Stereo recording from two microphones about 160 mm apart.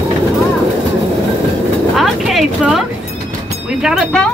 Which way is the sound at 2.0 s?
Centre (ahead or behind).